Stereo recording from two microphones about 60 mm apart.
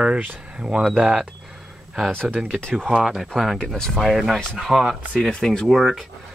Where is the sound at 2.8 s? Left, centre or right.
Centre.